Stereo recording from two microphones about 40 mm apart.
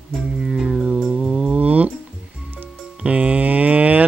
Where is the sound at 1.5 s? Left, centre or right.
Right.